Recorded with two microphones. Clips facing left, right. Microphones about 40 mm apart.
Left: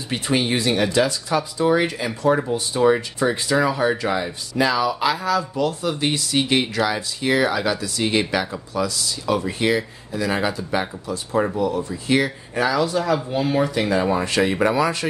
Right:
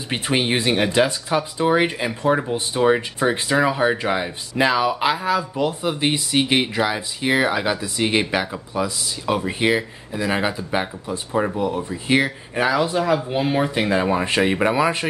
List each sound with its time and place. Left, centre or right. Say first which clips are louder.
0.1 s speech: even; right